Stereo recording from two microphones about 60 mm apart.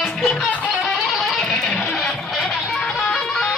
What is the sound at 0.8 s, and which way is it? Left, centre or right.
Music, centre.